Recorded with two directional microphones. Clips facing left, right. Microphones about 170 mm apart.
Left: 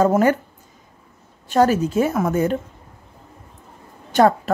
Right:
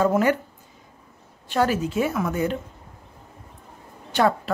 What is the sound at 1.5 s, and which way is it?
Speech, 40° left (ahead or behind).